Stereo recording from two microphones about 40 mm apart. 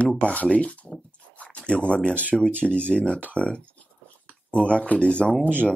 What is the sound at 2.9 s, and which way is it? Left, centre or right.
Speech, left.